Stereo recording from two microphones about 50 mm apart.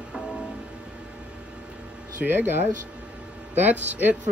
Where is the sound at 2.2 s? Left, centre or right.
Right.